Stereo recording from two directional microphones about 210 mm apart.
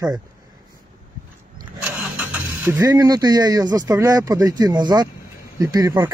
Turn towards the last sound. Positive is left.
turn(degrees=-15)  # may be behind; listen again after turning